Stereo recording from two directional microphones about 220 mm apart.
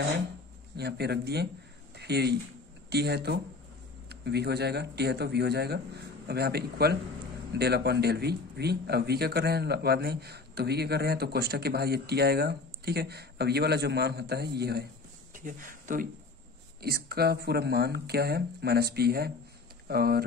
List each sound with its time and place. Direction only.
0.7 s speech: 50° right (ahead or behind)